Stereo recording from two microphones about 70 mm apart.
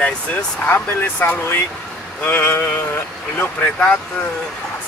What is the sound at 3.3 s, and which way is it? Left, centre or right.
Speech, left.